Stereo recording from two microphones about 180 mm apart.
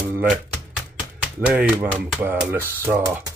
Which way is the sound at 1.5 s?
10° right (ahead or behind).